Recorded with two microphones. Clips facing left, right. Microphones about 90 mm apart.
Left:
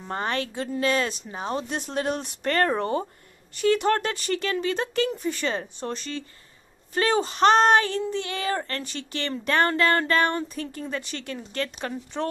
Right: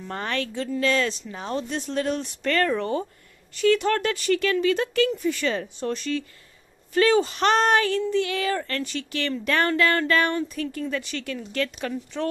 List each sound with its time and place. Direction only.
0.1 s a woman's voice: 20° left (ahead or behind)
2.0 s a woman's voice: 45° left (ahead or behind); by 12.3 s 30° left (ahead or behind)